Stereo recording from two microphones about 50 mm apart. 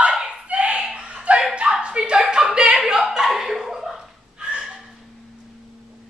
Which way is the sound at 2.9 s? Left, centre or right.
Centre.